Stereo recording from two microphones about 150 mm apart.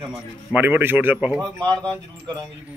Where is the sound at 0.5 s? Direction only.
10° right (ahead or behind).